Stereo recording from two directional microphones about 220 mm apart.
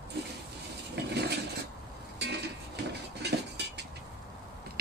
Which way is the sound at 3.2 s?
50° right (ahead or behind).